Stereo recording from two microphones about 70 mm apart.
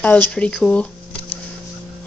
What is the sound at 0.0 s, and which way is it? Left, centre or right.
Speech, centre.